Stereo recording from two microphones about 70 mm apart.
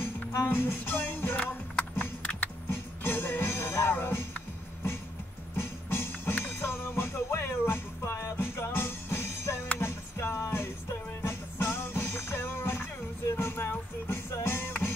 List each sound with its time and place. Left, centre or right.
0.3 s music: left
1.3 s music: left
2.7 s music: left
5.6 s music: left